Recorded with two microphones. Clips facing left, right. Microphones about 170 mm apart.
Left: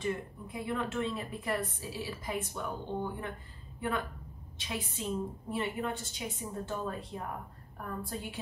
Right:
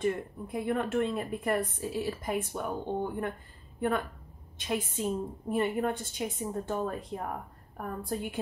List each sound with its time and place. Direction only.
0.0 s speech: 50° right (ahead or behind)
4.6 s speech: 50° right (ahead or behind)